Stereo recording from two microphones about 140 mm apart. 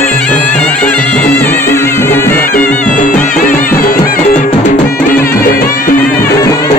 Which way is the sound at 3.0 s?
70° left (ahead or behind).